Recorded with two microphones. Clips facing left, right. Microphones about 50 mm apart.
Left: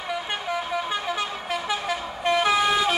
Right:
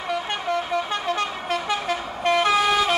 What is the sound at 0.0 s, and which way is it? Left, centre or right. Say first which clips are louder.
Vehicle: right 3 dB; centre.